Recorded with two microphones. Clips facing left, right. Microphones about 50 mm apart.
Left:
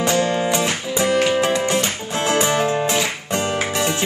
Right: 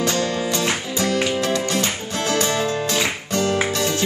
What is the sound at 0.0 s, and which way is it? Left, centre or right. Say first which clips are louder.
Music: left 3 dB; centre.